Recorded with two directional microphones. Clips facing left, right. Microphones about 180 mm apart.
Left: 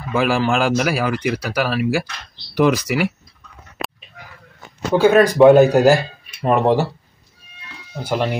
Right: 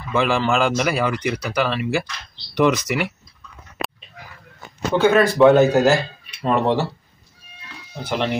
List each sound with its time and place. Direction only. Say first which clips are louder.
0.1 s speech: left 1 dB; 5° left (ahead or behind)
5.0 s speech: left 3 dB; 15° left (ahead or behind)
8.0 s speech: left 2 dB; 10° left (ahead or behind)